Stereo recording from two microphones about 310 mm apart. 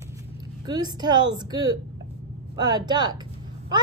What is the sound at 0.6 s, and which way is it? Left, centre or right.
Speech, centre.